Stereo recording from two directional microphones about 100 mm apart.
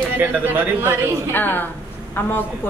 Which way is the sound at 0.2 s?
20° right (ahead or behind).